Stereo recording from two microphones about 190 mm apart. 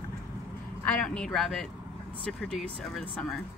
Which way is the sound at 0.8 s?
5° left (ahead or behind).